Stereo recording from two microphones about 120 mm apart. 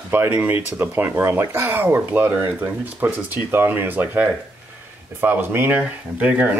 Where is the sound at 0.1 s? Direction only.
15° right (ahead or behind).